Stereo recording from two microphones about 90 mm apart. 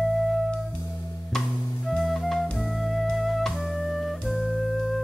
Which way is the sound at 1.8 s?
Centre (ahead or behind).